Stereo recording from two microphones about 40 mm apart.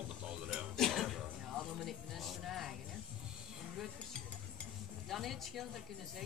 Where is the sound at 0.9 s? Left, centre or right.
Centre.